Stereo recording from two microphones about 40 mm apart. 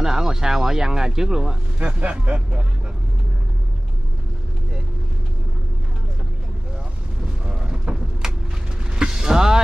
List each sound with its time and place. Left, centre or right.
0.0 s speech: centre
1.8 s speech: right
7.4 s artillery fire: right
8.9 s vehicle: centre